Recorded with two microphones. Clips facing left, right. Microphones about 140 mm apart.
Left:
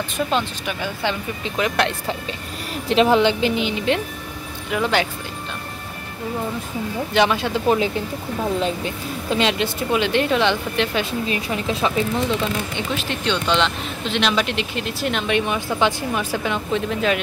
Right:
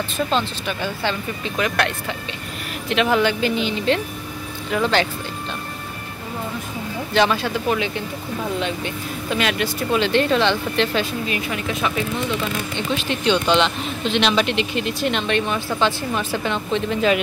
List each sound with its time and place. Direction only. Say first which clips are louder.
0.3 s speech: even; 10° left (ahead or behind)
7.2 s speech: even; 20° left (ahead or behind)
11.2 s speech: left 1 dB; 30° left (ahead or behind)
12.9 s speech: right 4 dB; 5° right (ahead or behind)